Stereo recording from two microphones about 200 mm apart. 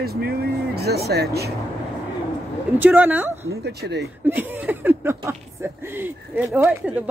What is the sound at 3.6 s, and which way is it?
Speech, 55° right (ahead or behind).